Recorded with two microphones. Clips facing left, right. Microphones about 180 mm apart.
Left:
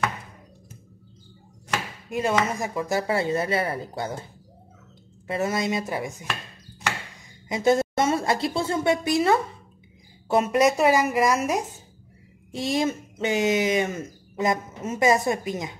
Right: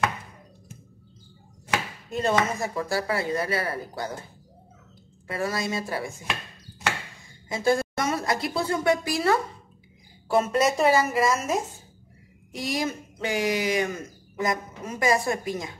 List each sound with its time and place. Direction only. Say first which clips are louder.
2.0 s speech: even; 10° left (ahead or behind)
5.2 s speech: left 3 dB; 20° left (ahead or behind)
7.4 s a woman's voice: left 3 dB; 20° left (ahead or behind)